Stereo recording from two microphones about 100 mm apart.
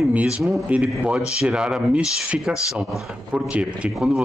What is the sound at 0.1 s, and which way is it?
Speech, 15° right (ahead or behind).